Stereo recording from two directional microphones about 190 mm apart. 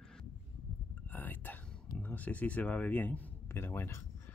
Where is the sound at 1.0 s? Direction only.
10° left (ahead or behind).